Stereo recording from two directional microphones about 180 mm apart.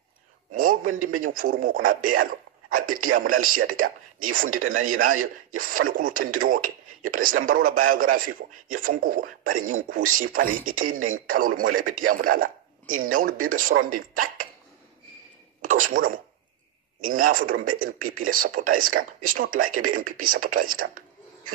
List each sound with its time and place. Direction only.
0.5 s a man's voice: 50° right (ahead or behind)
15.6 s a man's voice: 50° right (ahead or behind)